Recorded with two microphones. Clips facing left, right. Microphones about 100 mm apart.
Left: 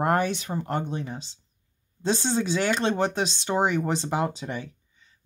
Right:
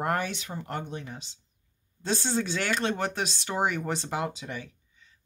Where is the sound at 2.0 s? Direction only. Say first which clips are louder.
Left 4 dB; 20° left (ahead or behind).